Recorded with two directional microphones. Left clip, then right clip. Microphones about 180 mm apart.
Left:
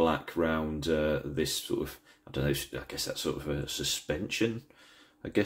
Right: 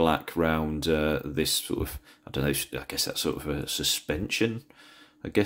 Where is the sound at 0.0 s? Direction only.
30° right (ahead or behind).